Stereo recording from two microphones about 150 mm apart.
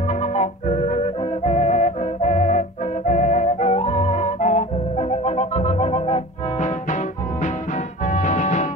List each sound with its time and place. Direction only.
0.1 s music: 50° left (ahead or behind)